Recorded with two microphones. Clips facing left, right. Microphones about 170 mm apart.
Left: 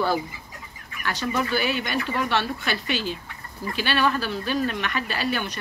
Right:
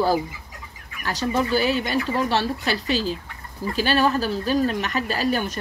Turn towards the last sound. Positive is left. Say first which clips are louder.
# right 4 dB
turn(degrees=-40)  # may be behind; listen again after turning